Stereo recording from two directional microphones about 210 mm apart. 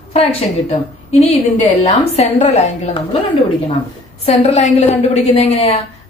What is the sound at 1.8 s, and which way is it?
A woman's voice, 30° left (ahead or behind).